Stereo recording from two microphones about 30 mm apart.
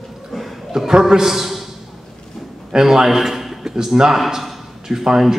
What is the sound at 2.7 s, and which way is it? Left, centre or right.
Speech, centre.